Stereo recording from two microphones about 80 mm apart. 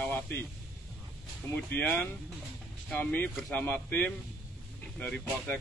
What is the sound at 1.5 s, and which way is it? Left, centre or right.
Speech, left.